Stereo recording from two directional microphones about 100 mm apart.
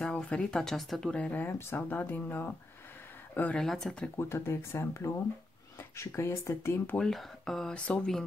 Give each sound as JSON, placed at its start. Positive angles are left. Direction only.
{"t": 0.0, "sound": "speech", "side_deg": 10}
{"t": 1.1, "sound": "speech", "side_deg": 15}
{"t": 4.2, "sound": "speech", "side_deg": 25}
{"t": 7.0, "sound": "speech", "side_deg": 5}